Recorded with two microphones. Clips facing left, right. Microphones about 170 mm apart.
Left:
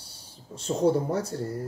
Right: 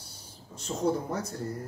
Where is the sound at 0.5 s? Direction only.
30° left (ahead or behind).